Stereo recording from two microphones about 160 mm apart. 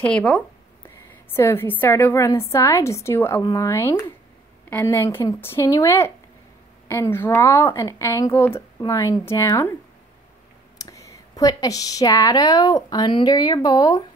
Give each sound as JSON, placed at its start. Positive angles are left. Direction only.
{"t": 0.0, "sound": "a woman's voice", "side_deg": 5}
{"t": 10.8, "sound": "speech", "side_deg": 20}